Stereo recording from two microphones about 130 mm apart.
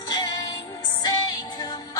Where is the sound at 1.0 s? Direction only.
30° left (ahead or behind).